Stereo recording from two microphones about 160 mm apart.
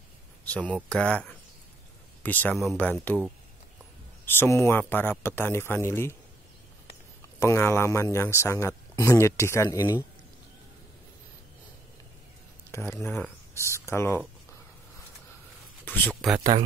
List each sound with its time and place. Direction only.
0.5 s speech: 10° left (ahead or behind)
4.3 s speech: 15° left (ahead or behind)
7.3 s speech: 15° left (ahead or behind)
12.7 s speech: 15° left (ahead or behind)
15.8 s a sound: 10° left (ahead or behind)